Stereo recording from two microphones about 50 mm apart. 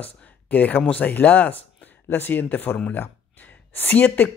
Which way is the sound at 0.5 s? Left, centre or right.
Left.